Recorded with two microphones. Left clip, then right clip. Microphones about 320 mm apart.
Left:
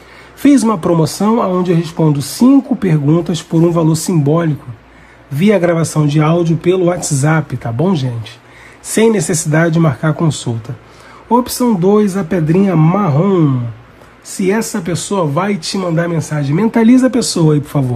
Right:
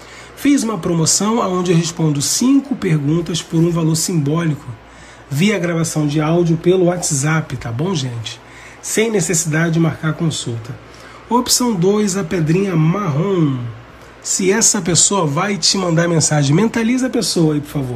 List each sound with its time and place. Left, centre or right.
0.4 s speech: centre
8.8 s speech: centre